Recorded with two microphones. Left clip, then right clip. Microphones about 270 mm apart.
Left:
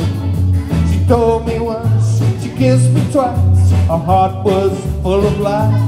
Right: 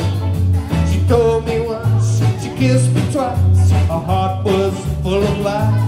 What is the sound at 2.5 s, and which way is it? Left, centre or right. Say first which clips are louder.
Music: left 3 dB; centre.